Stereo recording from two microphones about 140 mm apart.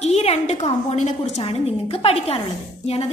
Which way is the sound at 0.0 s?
50° left (ahead or behind).